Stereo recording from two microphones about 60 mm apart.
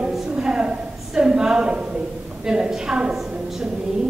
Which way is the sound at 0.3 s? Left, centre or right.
Centre.